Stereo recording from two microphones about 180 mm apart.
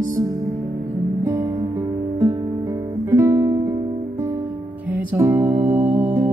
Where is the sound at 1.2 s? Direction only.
20° right (ahead or behind).